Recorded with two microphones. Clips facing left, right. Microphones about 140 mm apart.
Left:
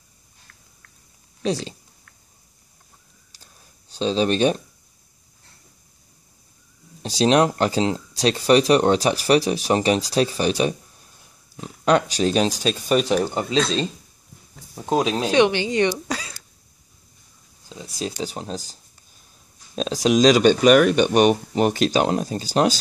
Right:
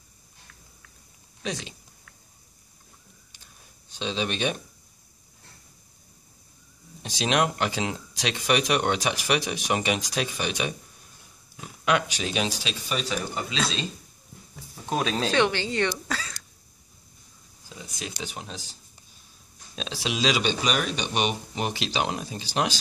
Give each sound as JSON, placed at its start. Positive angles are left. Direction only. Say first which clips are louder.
{"t": 1.4, "sound": "speech", "louder": "left 9 dB", "side_deg": 35}
{"t": 3.9, "sound": "speech", "louder": "left 9 dB", "side_deg": 40}
{"t": 7.0, "sound": "speech", "louder": "left 7 dB", "side_deg": 35}
{"t": 13.3, "sound": "speech", "louder": "left 7 dB", "side_deg": 30}
{"t": 15.0, "sound": "speech", "louder": "left 6 dB", "side_deg": 15}
{"t": 17.6, "sound": "speech", "louder": "left 8 dB", "side_deg": 30}